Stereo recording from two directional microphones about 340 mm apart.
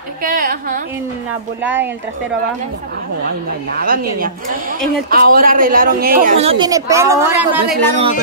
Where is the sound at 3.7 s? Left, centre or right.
Right; by 7.6 s centre.